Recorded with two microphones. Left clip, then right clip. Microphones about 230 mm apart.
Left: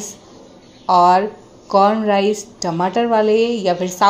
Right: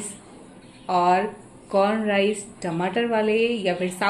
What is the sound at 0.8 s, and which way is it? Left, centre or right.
A woman's voice, left.